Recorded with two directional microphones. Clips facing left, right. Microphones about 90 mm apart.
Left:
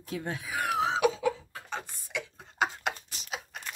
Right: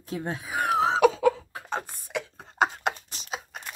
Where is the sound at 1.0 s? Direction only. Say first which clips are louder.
Right 6 dB; 55° right (ahead or behind).